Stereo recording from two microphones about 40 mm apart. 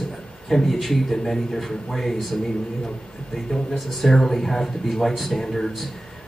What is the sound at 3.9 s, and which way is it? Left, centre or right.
A man's voice, centre.